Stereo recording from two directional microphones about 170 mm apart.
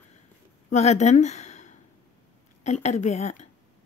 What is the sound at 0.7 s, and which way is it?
A woman's voice, 40° left (ahead or behind).